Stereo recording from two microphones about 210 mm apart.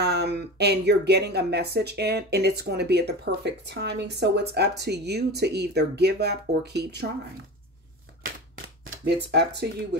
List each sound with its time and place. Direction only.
0.0 s speech: 50° right (ahead or behind)
9.0 s speech: 55° right (ahead or behind)